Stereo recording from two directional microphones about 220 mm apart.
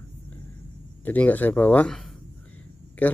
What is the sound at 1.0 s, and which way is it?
Speech, 5° left (ahead or behind).